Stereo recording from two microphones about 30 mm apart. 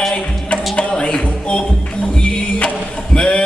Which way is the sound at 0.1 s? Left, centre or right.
Left.